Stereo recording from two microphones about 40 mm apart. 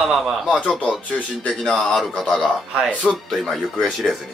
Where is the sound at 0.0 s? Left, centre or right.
Centre.